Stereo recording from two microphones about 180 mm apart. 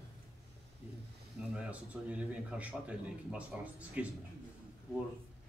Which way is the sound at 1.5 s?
5° right (ahead or behind).